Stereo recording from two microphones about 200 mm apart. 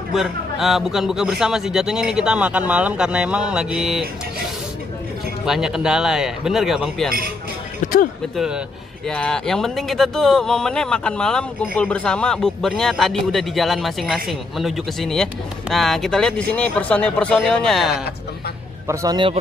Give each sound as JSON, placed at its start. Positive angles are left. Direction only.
{"t": 0.1, "sound": "speech", "side_deg": 0}
{"t": 5.4, "sound": "speech", "side_deg": -5}
{"t": 7.8, "sound": "music", "side_deg": 45}
{"t": 9.0, "sound": "speech", "side_deg": 5}
{"t": 18.9, "sound": "a man's voice", "side_deg": -20}